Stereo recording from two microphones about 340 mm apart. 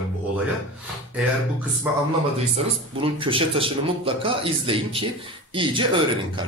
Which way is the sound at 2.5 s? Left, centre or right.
Centre.